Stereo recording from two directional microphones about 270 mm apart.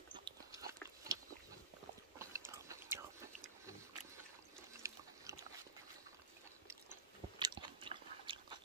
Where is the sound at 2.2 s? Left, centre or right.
Centre.